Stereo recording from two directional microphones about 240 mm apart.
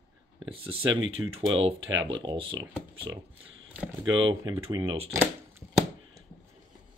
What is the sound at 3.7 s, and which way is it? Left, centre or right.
Speech, centre.